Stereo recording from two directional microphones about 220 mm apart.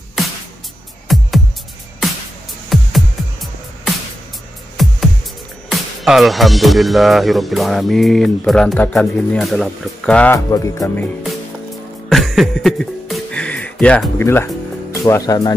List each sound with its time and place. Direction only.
1.0 s music: centre (ahead or behind)
2.7 s music: centre (ahead or behind)
5.7 s speech: centre (ahead or behind)
12.1 s music: centre (ahead or behind)
15.0 s speech: 15° left (ahead or behind)